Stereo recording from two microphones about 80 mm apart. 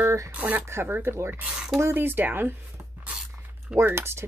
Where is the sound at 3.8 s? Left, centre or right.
Right.